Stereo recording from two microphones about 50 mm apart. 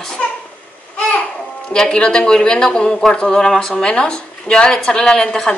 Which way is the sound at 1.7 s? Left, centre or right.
Centre.